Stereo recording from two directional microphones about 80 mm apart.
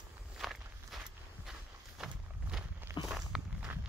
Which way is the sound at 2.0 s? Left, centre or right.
Centre.